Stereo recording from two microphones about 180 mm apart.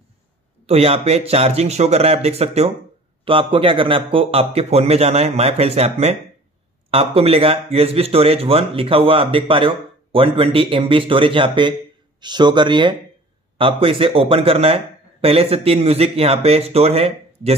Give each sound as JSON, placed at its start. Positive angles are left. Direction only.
{"t": 0.7, "sound": "speech", "side_deg": -35}